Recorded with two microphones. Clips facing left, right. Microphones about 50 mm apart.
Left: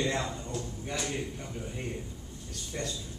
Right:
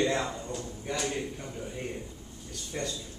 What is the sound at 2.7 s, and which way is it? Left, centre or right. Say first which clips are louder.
Speech: right 2 dB; centre.